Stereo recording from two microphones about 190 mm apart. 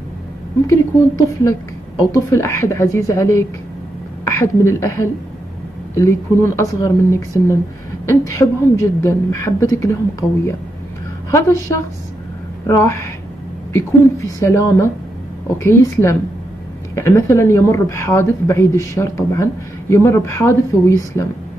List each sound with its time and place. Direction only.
0.7 s speech: 15° left (ahead or behind)
11.2 s speech: 15° left (ahead or behind)